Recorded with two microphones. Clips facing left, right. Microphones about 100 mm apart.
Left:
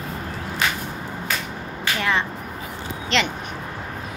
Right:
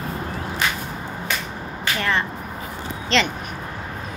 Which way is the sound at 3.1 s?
15° left (ahead or behind).